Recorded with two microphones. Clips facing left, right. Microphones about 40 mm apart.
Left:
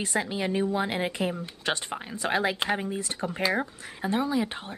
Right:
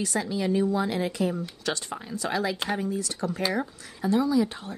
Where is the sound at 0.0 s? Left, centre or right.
Left.